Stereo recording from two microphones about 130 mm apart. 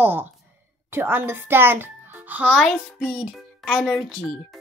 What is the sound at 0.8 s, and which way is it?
A child's voice, 15° right (ahead or behind).